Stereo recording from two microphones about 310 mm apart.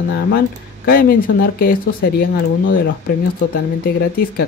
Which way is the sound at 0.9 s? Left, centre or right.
Left.